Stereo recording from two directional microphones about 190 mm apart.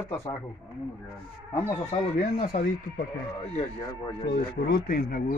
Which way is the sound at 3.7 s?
20° left (ahead or behind).